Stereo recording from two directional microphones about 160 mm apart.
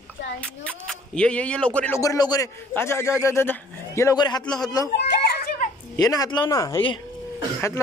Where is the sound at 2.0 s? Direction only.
20° left (ahead or behind).